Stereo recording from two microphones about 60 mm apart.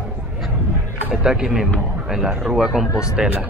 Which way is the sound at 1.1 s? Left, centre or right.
Centre.